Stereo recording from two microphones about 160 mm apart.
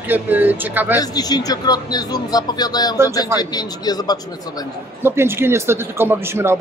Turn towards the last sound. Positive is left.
turn(degrees=-15)  # may be behind; listen again after turning